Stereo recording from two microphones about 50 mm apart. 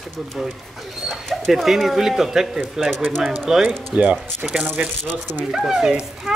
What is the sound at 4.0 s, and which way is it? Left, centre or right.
Speech, right.